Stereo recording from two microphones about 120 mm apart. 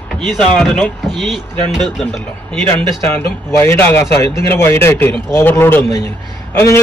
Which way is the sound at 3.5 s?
20° left (ahead or behind).